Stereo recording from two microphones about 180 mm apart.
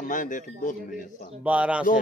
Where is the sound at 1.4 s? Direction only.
5° right (ahead or behind).